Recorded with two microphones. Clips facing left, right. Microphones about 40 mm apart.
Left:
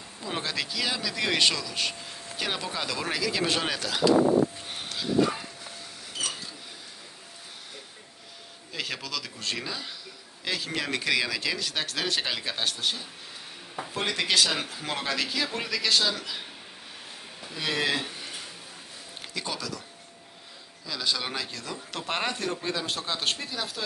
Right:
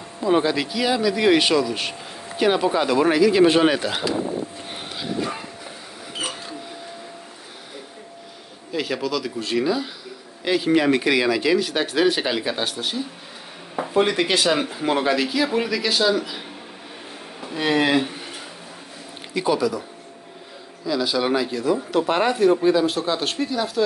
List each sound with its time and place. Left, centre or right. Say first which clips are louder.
0.2 s speech: right 12 dB; centre
4.6 s dog: right 2 dB; centre
6.1 s a sound: right 5 dB; right
8.7 s speech: right 10 dB; centre
10.4 s speech: right 12 dB; right
13.7 s speech: right 10 dB; right
17.4 s a sound: right 9 dB; right
19.3 s speech: right 13 dB; centre
20.8 s speech: right 9 dB; centre